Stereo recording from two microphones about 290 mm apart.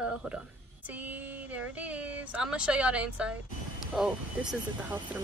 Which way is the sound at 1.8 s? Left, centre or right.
Centre.